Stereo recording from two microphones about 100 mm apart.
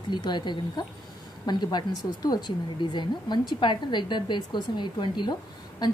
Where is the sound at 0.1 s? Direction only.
50° left (ahead or behind).